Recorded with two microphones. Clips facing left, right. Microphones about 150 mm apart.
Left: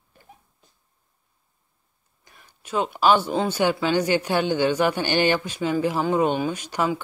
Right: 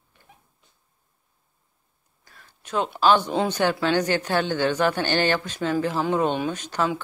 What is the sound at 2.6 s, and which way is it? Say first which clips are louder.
Speech: even; 5° left (ahead or behind).